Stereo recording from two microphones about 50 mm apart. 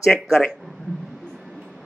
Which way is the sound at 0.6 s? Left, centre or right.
Centre.